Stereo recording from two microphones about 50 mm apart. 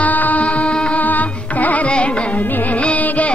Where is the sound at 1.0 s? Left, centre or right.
Left.